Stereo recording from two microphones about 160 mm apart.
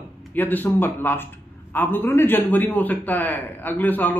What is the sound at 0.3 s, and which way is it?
A man's voice, 10° left (ahead or behind).